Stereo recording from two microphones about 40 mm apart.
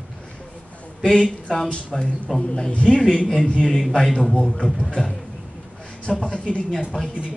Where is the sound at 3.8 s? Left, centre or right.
Centre.